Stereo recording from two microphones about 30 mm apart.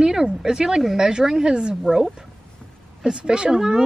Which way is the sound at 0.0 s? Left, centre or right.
Right.